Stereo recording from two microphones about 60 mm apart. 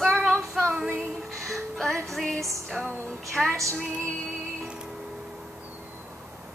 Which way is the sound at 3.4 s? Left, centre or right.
Centre.